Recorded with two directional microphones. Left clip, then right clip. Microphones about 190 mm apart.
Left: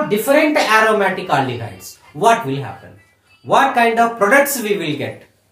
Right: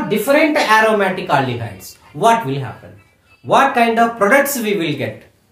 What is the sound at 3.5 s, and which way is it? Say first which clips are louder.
Speech: even; 25° right (ahead or behind).